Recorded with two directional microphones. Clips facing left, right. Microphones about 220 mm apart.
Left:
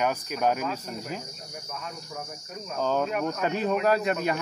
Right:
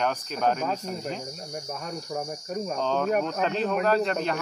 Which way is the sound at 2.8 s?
5° left (ahead or behind).